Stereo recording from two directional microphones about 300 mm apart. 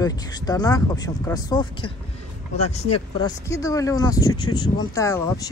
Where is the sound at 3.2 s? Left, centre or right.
Centre.